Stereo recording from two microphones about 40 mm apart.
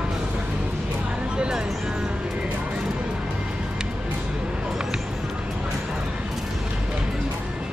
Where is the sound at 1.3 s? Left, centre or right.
Right.